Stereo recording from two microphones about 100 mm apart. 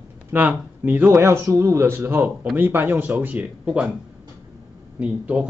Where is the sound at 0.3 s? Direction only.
20° right (ahead or behind).